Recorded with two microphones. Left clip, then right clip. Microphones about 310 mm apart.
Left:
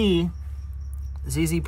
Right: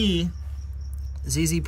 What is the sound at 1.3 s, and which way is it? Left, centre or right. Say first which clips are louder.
Speech: even; centre.